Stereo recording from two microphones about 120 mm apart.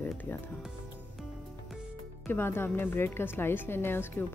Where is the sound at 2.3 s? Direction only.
20° left (ahead or behind).